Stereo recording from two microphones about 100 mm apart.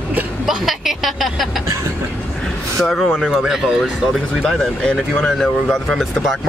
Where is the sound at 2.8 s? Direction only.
Centre (ahead or behind).